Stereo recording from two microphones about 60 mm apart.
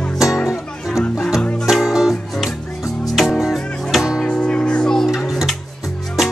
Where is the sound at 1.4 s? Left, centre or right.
Centre.